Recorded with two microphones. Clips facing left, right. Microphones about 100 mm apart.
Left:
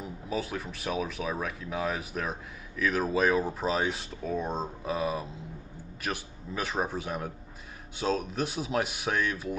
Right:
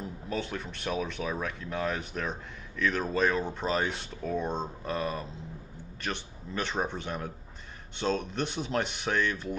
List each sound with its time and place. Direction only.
0.0 s speech: 5° left (ahead or behind)